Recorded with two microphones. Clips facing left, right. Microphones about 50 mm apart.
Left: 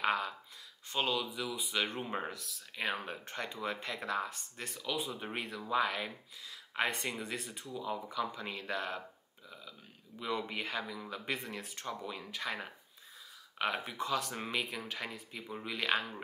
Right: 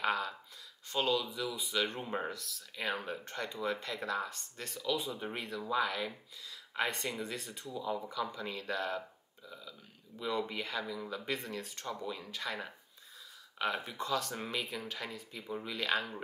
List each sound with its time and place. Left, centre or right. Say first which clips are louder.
0.0 s a sound: left 1 dB; centre
0.8 s speech: right 2 dB; centre
9.5 s burping: right 1 dB; left
10.5 s speech: even; left